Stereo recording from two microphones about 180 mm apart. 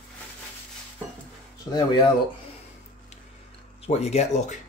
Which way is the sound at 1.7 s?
20° left (ahead or behind).